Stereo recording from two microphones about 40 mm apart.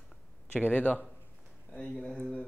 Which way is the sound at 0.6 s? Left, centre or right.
Left.